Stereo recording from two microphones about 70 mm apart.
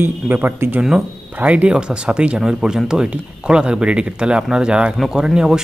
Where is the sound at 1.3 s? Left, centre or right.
Right.